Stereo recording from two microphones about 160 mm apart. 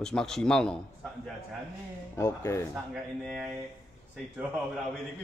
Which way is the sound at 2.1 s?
15° left (ahead or behind).